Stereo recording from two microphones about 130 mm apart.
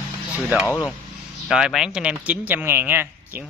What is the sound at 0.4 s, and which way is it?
A man's voice, 5° right (ahead or behind).